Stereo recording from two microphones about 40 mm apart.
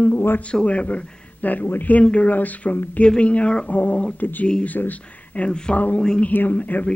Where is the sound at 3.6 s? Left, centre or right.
Left.